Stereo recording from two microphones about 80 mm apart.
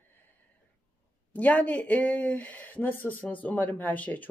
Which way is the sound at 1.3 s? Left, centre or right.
Centre.